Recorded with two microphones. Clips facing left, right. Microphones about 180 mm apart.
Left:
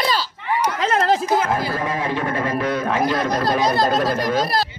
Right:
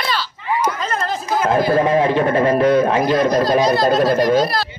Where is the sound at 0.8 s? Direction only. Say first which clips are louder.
Left 4 dB; 90° left.